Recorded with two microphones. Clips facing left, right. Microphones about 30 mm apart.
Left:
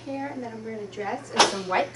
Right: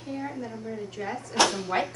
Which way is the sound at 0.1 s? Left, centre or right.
Centre.